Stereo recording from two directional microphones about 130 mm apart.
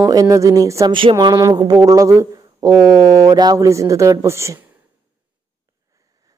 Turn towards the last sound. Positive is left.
turn(degrees=-20)  # may be behind; listen again after turning